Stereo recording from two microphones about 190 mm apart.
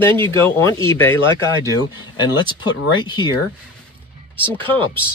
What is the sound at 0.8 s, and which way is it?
Speech, 10° left (ahead or behind).